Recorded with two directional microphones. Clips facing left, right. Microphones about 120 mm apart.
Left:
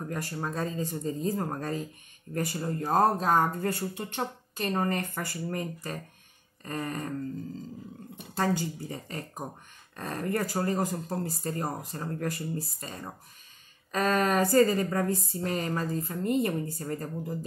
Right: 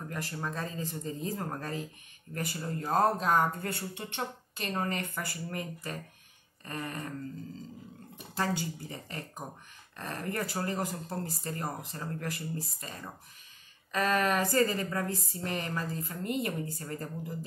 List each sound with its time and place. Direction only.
0.0 s a woman's voice: 30° left (ahead or behind)
8.4 s a woman's voice: 45° left (ahead or behind)
13.9 s a woman's voice: 40° left (ahead or behind)